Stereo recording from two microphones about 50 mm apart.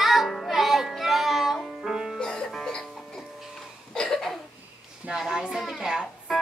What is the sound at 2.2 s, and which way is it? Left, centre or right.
Music, centre.